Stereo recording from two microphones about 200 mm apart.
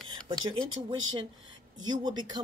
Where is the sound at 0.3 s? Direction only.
25° right (ahead or behind).